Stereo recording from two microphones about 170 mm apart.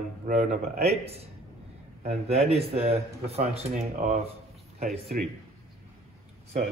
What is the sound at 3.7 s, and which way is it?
Speech, 50° right (ahead or behind).